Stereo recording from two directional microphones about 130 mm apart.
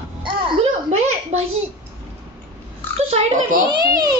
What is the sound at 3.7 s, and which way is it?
Speech, 30° right (ahead or behind).